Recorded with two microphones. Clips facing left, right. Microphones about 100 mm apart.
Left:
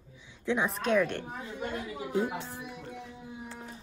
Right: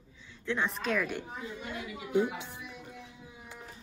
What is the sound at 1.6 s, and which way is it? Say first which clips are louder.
Speech: left 4 dB; 45° left (ahead or behind).